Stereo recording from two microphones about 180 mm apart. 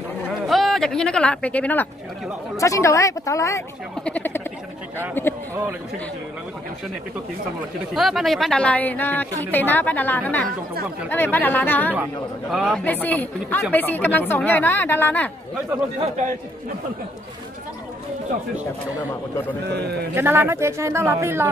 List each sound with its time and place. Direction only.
0.3 s a woman's voice: centre (ahead or behind)
7.9 s a woman's voice: centre (ahead or behind)
11.9 s speech: 5° right (ahead or behind)
12.8 s a woman's voice: 10° left (ahead or behind)
20.2 s a woman's voice: 15° right (ahead or behind)